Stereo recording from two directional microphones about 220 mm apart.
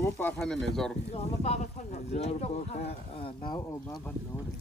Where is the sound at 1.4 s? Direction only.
30° left (ahead or behind).